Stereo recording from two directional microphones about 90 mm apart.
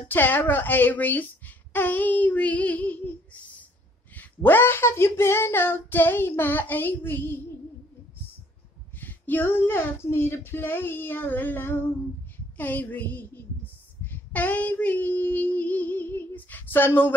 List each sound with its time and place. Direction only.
0.1 s female singing: 20° left (ahead or behind)
4.1 s female singing: 20° left (ahead or behind)
9.0 s female singing: 20° left (ahead or behind)